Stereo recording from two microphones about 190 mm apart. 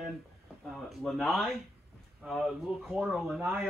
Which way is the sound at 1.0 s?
Centre (ahead or behind).